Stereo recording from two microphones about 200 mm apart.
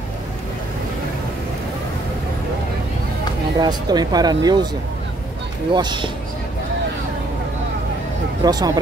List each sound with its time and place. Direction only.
3.5 s speech: 20° right (ahead or behind)
5.7 s speech: 25° right (ahead or behind)
8.5 s speech: 20° right (ahead or behind)